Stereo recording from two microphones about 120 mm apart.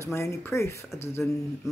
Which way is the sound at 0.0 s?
20° left (ahead or behind).